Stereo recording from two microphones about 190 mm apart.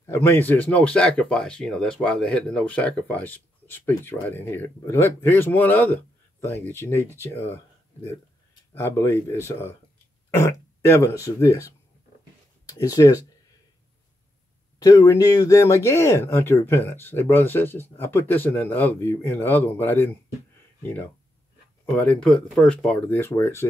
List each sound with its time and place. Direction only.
0.0 s speech: 15° left (ahead or behind)
14.8 s speech: 20° left (ahead or behind)
21.9 s speech: 5° left (ahead or behind)